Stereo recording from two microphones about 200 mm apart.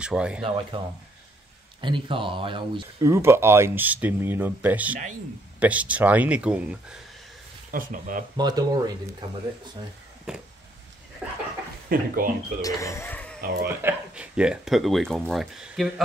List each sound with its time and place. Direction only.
0.0 s speech: 5° right (ahead or behind)
0.4 s speech: 25° right (ahead or behind)
1.8 s speech: 25° right (ahead or behind)
3.1 s speech: 15° right (ahead or behind)
7.7 s speech: 40° right (ahead or behind)
8.4 s speech: 20° right (ahead or behind)
10.3 s speech: 5° right (ahead or behind)
11.9 s speech: 45° right (ahead or behind)
12.6 s speech: 15° left (ahead or behind)
13.4 s speech: 50° right (ahead or behind)
13.7 s speech: 10° right (ahead or behind)